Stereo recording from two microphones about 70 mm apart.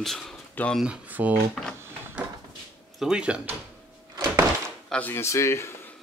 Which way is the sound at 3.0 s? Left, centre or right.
Centre.